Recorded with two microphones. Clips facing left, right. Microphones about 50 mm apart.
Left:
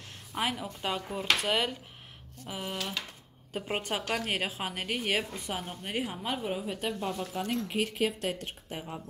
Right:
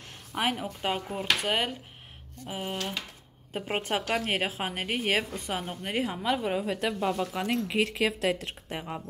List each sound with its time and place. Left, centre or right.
0.4 s speech: right
1.0 s a woman's voice: right
8.6 s a woman's voice: right